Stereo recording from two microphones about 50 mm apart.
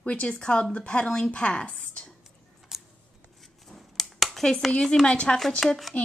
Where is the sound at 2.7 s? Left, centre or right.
Centre.